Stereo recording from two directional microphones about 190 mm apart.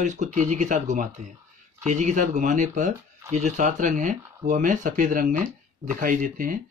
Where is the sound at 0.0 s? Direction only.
40° right (ahead or behind).